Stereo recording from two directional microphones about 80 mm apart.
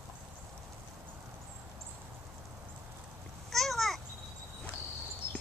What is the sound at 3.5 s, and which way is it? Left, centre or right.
Babbling, centre.